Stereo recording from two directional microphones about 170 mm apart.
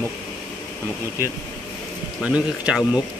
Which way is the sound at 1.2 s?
15° right (ahead or behind).